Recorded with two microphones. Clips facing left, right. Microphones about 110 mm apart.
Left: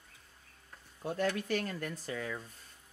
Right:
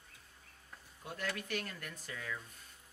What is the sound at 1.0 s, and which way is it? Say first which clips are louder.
Speech: left 8 dB; 35° left (ahead or behind).